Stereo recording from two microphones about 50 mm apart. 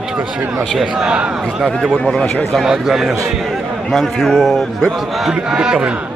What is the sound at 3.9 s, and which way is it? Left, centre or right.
A man's voice, centre.